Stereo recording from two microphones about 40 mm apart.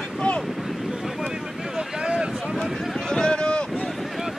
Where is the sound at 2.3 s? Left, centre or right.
Centre.